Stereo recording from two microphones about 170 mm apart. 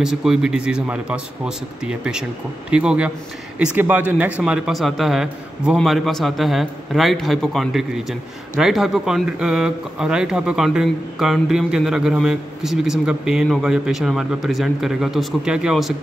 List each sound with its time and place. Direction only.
0.0 s a man's voice: 5° right (ahead or behind)